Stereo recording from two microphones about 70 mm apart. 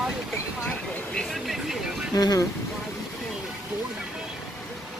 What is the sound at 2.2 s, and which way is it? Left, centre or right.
Speech, left.